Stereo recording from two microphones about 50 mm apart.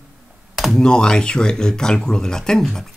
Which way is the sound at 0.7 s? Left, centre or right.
Centre.